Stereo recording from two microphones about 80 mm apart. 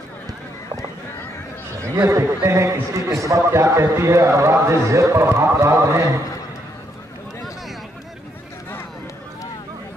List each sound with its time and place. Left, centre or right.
2.0 s a man's voice: right